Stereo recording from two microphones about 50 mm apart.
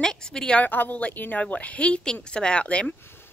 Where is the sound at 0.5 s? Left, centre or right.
Left.